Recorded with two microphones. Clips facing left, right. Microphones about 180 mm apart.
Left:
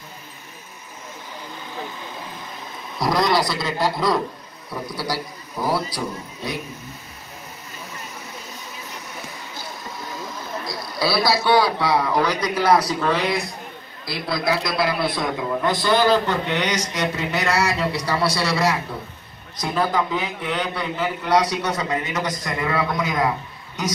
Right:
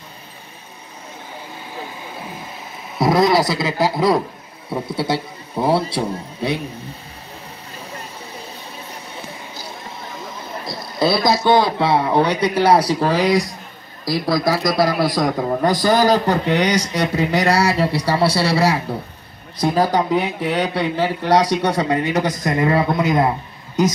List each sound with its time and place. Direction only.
3.2 s a man's voice: 5° right (ahead or behind)
4.6 s a man's voice: 25° right (ahead or behind)
10.0 s a sound: 25° right (ahead or behind)
11.4 s a man's voice: 25° right (ahead or behind)
22.4 s a man's voice: 45° right (ahead or behind)